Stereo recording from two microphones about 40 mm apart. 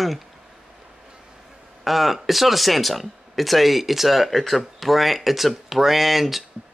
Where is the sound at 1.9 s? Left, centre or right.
Centre.